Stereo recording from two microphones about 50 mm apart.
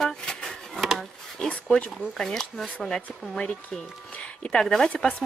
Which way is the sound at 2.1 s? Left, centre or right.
Centre.